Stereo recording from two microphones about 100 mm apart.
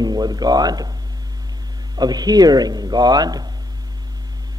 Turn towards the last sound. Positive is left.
turn(degrees=-40)  # may be behind; listen again after turning